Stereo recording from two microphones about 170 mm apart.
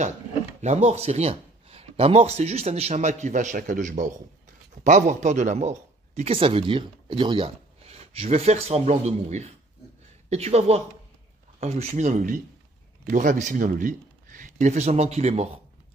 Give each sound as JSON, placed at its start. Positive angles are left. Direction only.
{"t": 0.6, "sound": "speech", "side_deg": -40}